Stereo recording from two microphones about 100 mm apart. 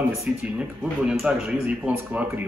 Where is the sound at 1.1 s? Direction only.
5° right (ahead or behind).